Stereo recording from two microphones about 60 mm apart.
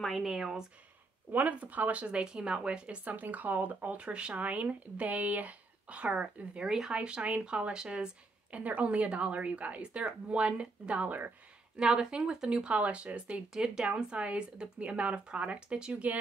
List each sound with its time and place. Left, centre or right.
0.2 s speech: centre
1.3 s a woman's voice: right
6.6 s speech: centre
6.9 s a woman's voice: centre
11.7 s speech: centre